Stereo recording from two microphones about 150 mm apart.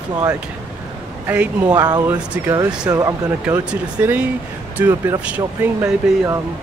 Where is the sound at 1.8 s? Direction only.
30° right (ahead or behind).